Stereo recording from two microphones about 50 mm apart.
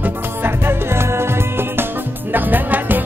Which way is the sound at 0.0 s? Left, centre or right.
Right.